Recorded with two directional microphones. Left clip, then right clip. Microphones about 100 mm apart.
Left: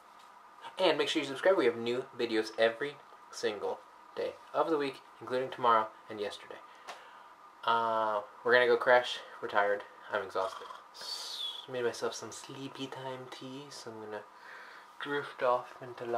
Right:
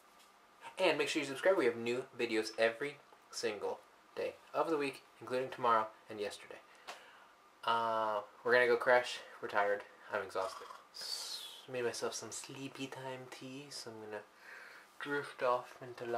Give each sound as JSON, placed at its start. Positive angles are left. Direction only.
{"t": 0.7, "sound": "speech", "side_deg": 5}